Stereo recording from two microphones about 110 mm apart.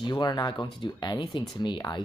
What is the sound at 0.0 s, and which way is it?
Speech, 40° left (ahead or behind).